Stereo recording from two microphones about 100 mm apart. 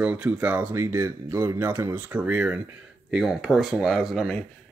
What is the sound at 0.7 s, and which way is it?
Speech, 25° right (ahead or behind).